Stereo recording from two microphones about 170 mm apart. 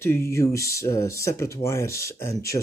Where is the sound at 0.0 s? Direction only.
15° left (ahead or behind).